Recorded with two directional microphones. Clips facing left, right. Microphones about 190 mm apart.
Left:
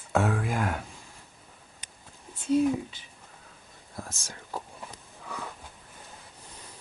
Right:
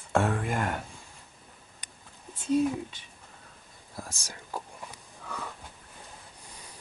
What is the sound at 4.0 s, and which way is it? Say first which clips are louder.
Speech: left 1 dB; centre (ahead or behind).